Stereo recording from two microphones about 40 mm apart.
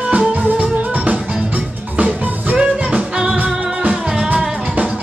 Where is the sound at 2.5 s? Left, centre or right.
Centre.